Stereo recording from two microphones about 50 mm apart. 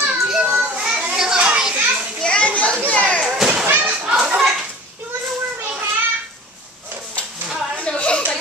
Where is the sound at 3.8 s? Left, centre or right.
Centre.